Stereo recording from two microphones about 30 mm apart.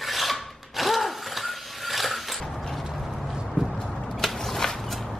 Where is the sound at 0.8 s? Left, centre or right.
Centre.